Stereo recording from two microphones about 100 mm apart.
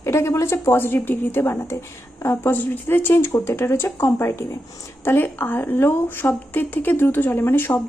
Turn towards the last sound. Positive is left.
turn(degrees=20)  # may be behind; listen again after turning